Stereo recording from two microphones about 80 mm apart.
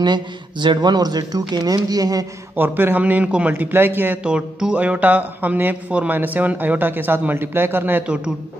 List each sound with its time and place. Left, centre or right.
0.0 s speech: right
2.5 s speech: right
3.5 s speech: right
4.2 s speech: centre; by 8.0 s right